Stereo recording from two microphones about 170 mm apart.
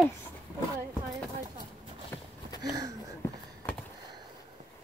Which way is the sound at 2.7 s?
20° right (ahead or behind).